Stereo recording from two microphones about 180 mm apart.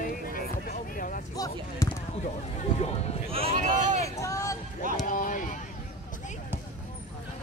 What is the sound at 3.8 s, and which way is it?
Vehicle, 40° right (ahead or behind).